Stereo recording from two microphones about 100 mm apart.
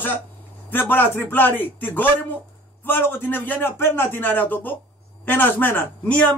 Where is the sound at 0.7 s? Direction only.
20° left (ahead or behind).